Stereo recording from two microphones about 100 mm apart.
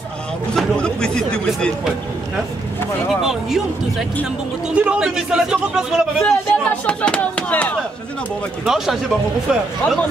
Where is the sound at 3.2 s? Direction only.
5° right (ahead or behind).